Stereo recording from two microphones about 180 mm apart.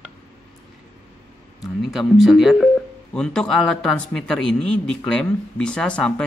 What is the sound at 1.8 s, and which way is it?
Speech, centre (ahead or behind).